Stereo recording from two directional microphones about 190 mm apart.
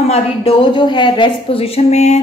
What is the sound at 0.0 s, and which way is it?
A woman's voice, 30° left (ahead or behind).